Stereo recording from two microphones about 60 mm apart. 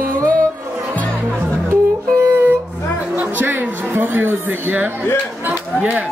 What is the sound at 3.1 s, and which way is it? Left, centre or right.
Speech, right.